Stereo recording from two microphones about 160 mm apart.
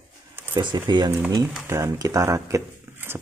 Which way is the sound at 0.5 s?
25° right (ahead or behind).